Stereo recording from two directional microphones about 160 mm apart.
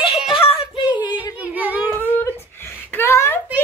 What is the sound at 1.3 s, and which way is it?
Singing, 10° right (ahead or behind).